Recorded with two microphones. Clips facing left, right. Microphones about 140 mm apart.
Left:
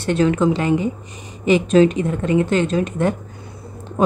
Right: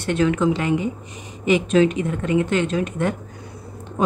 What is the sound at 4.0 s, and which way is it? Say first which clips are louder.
Speech: left 4 dB; 45° left (ahead or behind).